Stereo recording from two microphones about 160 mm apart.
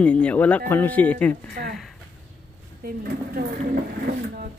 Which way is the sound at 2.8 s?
70° right (ahead or behind).